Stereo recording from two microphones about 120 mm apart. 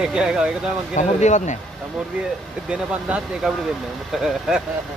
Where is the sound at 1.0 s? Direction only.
85° left.